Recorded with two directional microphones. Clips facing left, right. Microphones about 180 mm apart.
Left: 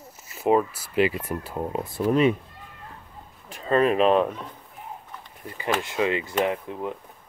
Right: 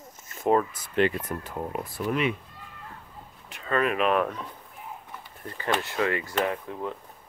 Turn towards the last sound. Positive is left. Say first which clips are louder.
# left 3 dB
turn(degrees=20)  # may be behind; listen again after turning